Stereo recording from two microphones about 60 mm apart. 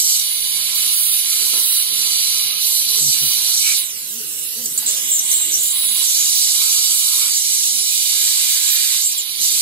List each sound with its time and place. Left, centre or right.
0.8 s steam: left
3.1 s hiss: left
5.9 s a sound: left